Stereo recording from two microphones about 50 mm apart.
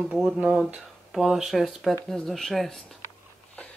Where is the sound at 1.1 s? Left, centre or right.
Centre.